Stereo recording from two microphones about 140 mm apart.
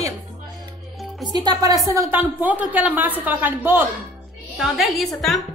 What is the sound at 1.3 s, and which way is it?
Speech, 30° right (ahead or behind).